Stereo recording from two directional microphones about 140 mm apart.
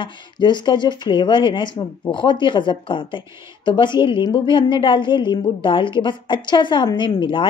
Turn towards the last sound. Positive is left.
turn(degrees=35)  # may be behind; listen again after turning